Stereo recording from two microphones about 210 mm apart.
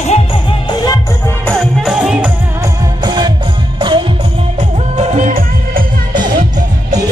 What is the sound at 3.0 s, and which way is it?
Music, 20° right (ahead or behind).